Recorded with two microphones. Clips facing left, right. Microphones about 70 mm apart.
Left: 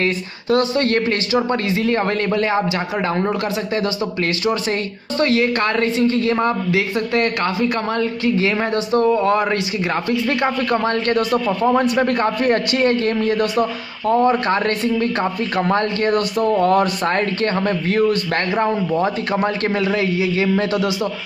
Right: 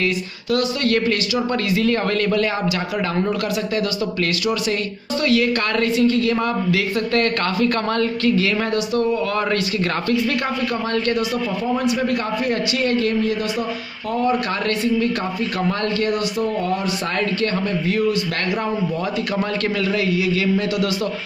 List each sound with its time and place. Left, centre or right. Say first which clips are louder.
0.0 s speech: left 1 dB; left
10.7 s a man's voice: left 3 dB; left
11.4 s a man's voice: left 4 dB; left
17.0 s a man's voice: left 3 dB; left